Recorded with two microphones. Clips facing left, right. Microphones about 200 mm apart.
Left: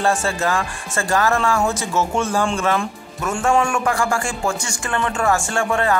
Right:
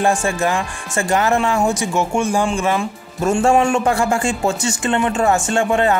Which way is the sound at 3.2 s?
30° right (ahead or behind).